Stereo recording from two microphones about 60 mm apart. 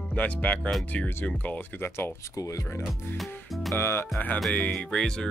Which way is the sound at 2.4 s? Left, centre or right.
Left.